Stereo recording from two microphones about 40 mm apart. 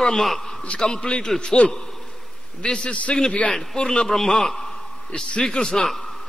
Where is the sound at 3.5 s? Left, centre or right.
Centre.